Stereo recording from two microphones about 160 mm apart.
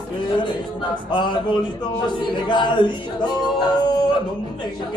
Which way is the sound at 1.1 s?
30° left (ahead or behind).